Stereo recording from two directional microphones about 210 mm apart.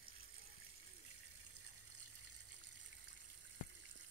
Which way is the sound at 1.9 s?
90° right.